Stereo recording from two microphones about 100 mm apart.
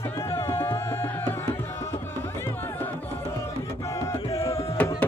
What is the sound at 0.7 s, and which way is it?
Music, 25° left (ahead or behind).